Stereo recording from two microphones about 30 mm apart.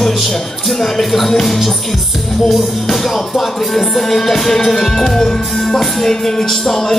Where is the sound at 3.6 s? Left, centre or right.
Centre.